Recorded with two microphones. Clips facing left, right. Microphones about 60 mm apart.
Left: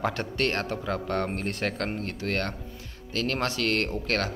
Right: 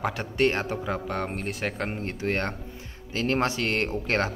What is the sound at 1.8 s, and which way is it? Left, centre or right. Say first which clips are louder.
A man's voice: right 1 dB; centre.